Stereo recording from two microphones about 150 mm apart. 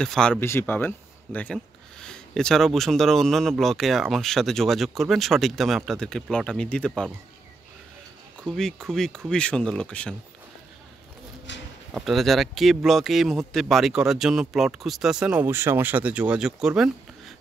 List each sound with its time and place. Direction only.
0.0 s speech: 5° left (ahead or behind)
0.4 s speech: 15° left (ahead or behind)
8.5 s speech: 5° left (ahead or behind)
11.9 s speech: centre (ahead or behind)